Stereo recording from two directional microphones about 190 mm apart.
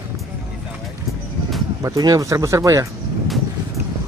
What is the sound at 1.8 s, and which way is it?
Speech, 20° right (ahead or behind).